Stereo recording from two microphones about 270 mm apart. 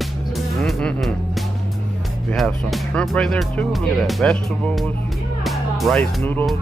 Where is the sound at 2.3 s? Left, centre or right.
Centre.